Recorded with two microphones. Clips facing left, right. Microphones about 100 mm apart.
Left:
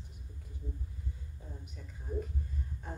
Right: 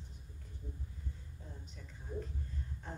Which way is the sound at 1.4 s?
10° left (ahead or behind).